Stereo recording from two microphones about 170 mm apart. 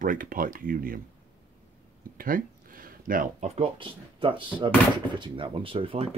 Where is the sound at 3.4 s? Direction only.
35° right (ahead or behind).